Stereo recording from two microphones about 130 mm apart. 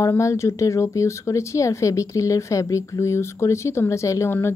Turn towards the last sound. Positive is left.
turn(degrees=20)  # may be behind; listen again after turning